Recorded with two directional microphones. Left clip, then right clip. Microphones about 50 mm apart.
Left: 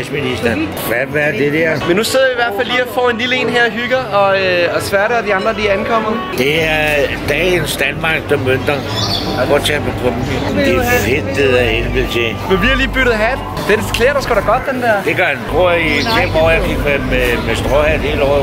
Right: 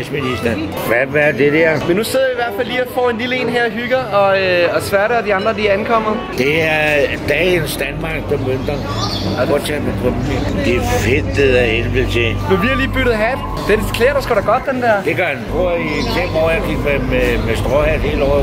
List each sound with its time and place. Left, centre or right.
0.8 s speech: right
1.9 s speech: centre
9.4 s speech: centre
15.6 s speech: centre
16.2 s speech: centre